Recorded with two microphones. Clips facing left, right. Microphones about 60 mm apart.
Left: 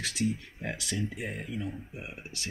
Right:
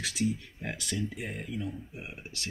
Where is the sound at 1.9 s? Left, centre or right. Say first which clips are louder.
Left 1 dB; centre.